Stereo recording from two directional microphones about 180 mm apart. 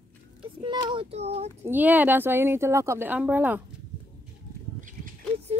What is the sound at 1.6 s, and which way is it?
A woman's voice, 10° right (ahead or behind).